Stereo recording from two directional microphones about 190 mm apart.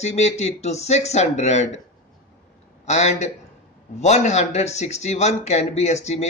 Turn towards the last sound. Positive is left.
turn(degrees=35)  # may be behind; listen again after turning